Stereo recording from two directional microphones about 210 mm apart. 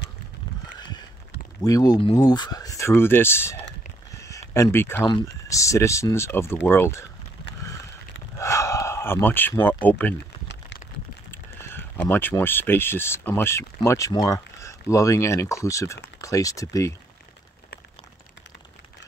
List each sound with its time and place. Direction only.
0.7 s honk: 20° left (ahead or behind)
1.6 s speech: 20° left (ahead or behind)
8.4 s speech: 15° left (ahead or behind)
11.2 s speech: 10° left (ahead or behind)